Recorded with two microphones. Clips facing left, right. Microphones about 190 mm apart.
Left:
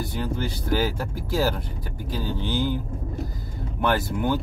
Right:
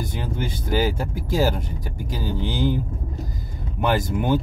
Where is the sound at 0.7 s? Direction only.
15° right (ahead or behind).